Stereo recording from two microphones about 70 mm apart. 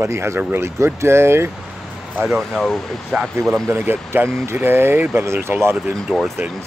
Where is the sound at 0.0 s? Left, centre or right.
Right.